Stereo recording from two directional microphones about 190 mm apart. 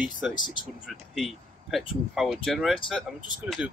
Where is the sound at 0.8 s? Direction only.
Centre (ahead or behind).